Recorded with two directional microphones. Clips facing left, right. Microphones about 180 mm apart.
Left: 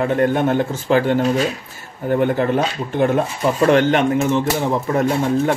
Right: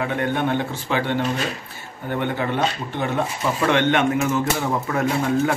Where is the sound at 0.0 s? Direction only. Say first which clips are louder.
Left 6 dB; 40° left (ahead or behind).